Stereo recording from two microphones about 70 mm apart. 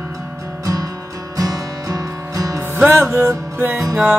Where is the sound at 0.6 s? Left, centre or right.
Right.